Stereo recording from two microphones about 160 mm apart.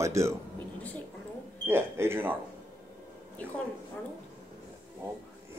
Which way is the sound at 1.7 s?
15° right (ahead or behind).